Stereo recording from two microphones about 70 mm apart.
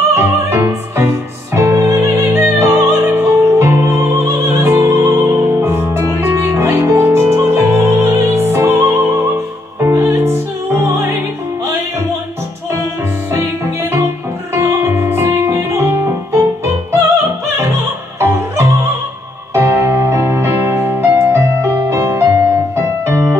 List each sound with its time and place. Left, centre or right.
0.1 s music: right
13.4 s music: right
18.2 s music: right